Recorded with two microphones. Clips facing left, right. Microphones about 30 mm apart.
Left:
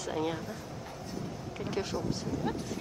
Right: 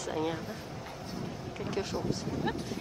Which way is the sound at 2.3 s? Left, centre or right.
Right.